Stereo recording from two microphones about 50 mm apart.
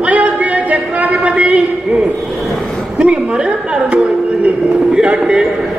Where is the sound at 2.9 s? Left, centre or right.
Centre.